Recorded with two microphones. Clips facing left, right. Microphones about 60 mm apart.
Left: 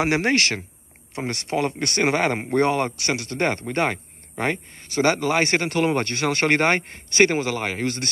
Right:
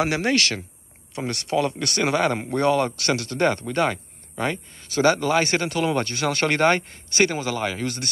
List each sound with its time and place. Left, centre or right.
0.0 s speech: left